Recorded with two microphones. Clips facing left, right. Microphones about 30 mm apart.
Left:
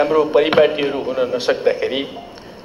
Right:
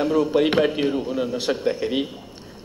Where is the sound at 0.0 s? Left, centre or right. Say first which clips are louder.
Left 5 dB; left.